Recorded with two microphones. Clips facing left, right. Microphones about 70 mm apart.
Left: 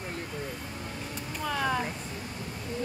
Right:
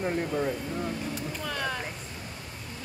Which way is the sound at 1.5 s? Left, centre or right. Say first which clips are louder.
Left 5 dB; centre.